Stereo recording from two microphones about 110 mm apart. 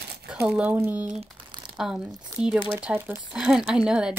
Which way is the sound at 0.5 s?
10° right (ahead or behind).